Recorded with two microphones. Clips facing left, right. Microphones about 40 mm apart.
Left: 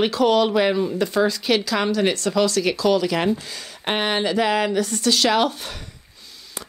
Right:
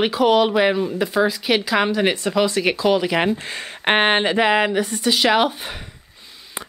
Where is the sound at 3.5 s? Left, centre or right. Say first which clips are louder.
Right 6 dB; right; by 5.7 s centre.